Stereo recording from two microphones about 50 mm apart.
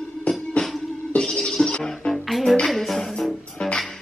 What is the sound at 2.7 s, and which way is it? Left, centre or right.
Music, centre.